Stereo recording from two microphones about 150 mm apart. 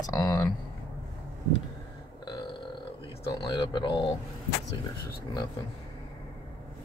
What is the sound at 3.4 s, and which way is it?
Speech, 30° left (ahead or behind).